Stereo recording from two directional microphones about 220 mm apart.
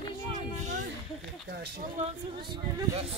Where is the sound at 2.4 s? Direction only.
20° right (ahead or behind).